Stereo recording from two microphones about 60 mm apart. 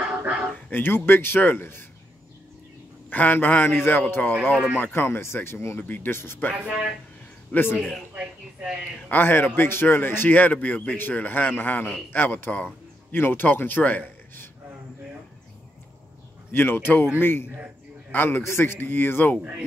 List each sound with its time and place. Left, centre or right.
0.1 s bow-wow: right
0.7 s a man's voice: left
3.1 s a man's voice: left
5.8 s a man's voice: left
6.5 s speech: centre
7.5 s a man's voice: left
8.2 s speech: right
9.1 s a man's voice: left
16.5 s a man's voice: left